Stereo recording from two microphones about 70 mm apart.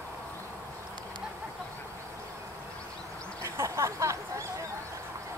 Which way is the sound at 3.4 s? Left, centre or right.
Right.